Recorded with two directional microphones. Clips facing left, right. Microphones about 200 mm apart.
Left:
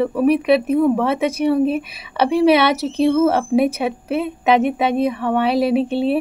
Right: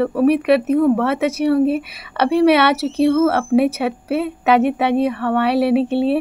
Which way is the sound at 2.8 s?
15° left (ahead or behind).